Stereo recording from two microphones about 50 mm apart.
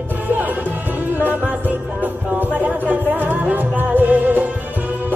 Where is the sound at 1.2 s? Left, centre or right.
Right.